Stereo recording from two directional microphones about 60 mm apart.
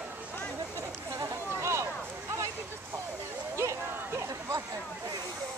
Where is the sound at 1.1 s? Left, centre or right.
Right.